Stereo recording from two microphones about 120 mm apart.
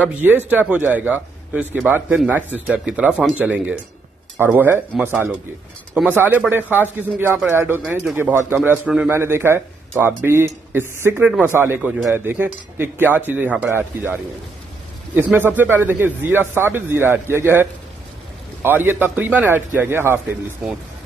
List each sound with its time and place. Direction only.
0.0 s a man's voice: 15° right (ahead or behind)
8.8 s a man's voice: 10° right (ahead or behind)
9.1 s a man's voice: 20° right (ahead or behind)
20.6 s speech: 5° right (ahead or behind)